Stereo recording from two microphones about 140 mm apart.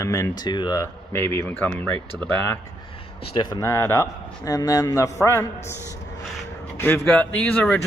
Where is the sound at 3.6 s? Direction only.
20° left (ahead or behind).